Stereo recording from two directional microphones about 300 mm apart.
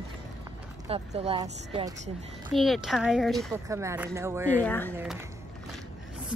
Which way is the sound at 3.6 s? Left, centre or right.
Centre.